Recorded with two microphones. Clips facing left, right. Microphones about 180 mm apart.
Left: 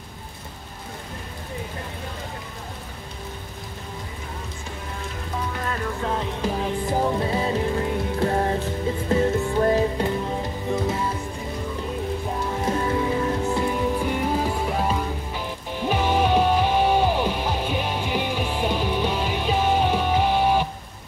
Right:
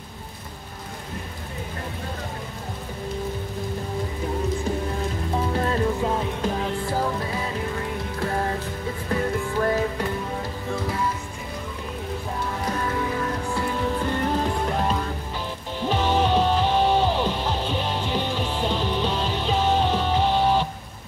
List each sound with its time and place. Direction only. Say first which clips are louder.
5.5 s rain on surface: right 8 dB; 30° right (ahead or behind)
5.9 s music: right 2 dB; 10° right (ahead or behind)
6.9 s music: left 3 dB; 20° left (ahead or behind)
12.6 s music: left 4 dB; 25° left (ahead or behind)